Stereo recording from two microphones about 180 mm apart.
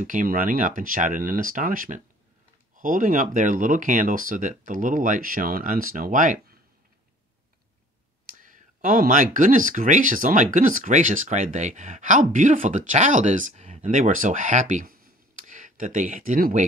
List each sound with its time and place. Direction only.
0.0 s speech: 45° right (ahead or behind)
8.3 s speech: 45° right (ahead or behind)